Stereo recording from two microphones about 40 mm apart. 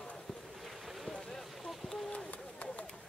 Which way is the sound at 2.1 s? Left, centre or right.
Left.